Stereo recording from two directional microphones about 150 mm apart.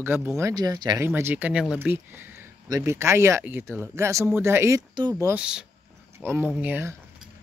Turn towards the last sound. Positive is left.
turn(degrees=-15)  # may be behind; listen again after turning